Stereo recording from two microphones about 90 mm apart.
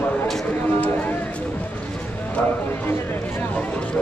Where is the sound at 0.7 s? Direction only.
20° left (ahead or behind).